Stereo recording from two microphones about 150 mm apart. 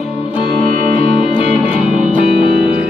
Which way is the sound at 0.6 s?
40° left (ahead or behind).